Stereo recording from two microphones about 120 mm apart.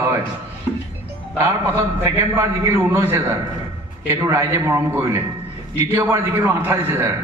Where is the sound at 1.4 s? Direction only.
15° right (ahead or behind).